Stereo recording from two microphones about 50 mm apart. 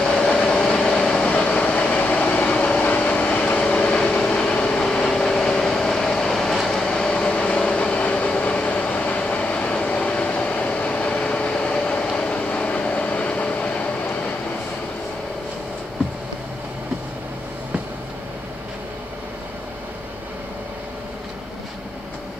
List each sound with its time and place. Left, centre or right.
0.0 s vehicle: centre; by 14.1 s left